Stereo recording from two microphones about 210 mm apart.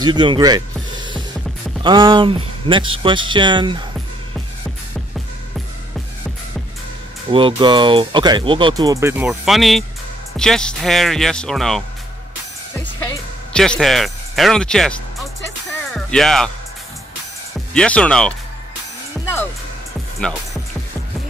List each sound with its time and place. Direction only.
0.0 s speech: 20° right (ahead or behind)
1.8 s speech: 20° right (ahead or behind)
7.2 s speech: 25° right (ahead or behind); by 11.8 s centre (ahead or behind)
12.7 s music: 10° left (ahead or behind)
15.9 s speech: centre (ahead or behind)
17.7 s speech: 5° left (ahead or behind)